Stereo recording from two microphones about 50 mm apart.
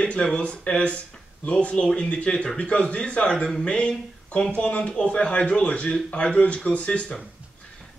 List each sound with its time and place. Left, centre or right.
0.0 s speech: left